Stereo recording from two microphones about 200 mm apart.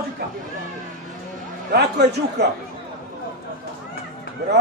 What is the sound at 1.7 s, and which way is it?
Speech, 50° right (ahead or behind).